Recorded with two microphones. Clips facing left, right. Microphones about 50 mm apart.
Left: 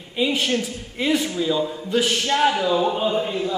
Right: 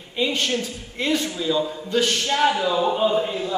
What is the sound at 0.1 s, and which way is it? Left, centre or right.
A man's voice, centre.